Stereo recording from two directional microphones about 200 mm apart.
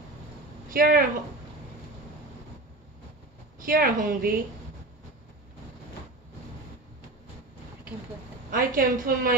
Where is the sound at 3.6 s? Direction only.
45° right (ahead or behind).